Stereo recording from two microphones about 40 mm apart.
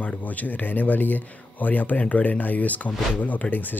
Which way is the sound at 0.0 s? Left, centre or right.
Left.